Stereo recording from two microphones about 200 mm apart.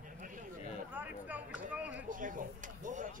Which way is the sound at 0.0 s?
40° right (ahead or behind).